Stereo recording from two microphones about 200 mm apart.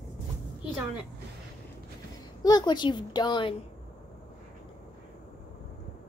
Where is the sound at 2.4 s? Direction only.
20° left (ahead or behind).